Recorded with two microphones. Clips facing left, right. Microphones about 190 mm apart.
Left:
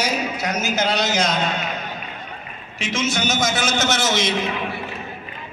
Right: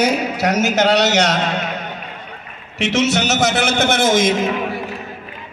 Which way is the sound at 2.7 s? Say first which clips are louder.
Right 7 dB; 70° right (ahead or behind).